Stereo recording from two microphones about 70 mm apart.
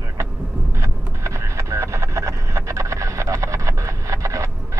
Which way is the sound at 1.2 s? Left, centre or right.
Right.